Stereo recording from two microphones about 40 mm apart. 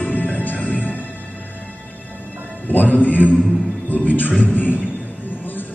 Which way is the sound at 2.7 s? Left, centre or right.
Left.